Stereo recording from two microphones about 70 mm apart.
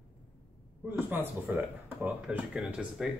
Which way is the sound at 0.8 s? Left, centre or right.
Right.